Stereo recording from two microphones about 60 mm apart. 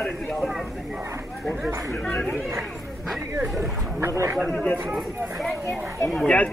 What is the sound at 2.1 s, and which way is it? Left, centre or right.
Speech, left.